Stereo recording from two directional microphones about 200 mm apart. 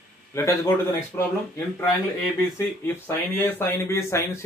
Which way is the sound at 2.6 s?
10° left (ahead or behind).